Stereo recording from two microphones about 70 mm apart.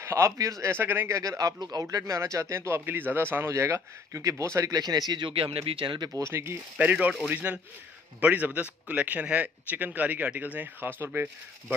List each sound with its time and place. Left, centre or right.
0.0 s speech: right
0.7 s speech: right
1.1 s speech: right
1.6 s speech: right
2.1 s speech: right
2.8 s speech: right
4.6 s speech: right
6.0 s speech: right
6.8 s speech: right